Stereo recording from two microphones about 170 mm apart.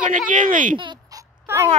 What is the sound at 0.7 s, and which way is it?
Dog, 25° right (ahead or behind).